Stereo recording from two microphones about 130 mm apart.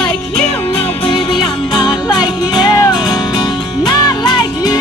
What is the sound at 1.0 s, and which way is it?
Music, 40° left (ahead or behind).